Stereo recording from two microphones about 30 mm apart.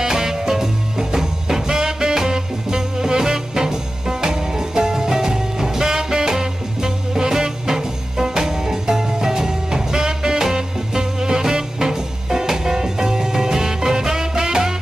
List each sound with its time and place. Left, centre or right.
0.0 s music: centre